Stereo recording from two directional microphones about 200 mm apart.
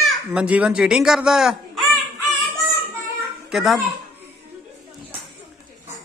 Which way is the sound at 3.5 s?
Centre (ahead or behind).